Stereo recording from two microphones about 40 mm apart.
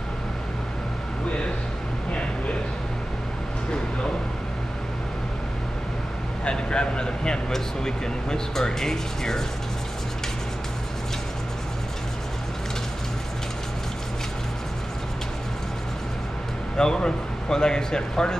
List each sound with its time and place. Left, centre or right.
6.4 s speech: left
16.7 s speech: centre